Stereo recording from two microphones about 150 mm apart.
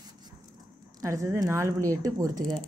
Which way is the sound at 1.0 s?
20° right (ahead or behind).